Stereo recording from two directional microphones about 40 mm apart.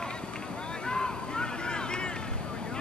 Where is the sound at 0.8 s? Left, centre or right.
Left.